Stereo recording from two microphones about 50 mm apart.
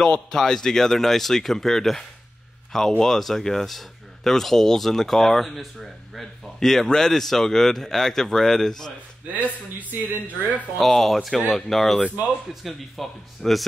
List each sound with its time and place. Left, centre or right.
0.0 s speech: centre
9.3 s a man's voice: right
10.8 s speech: centre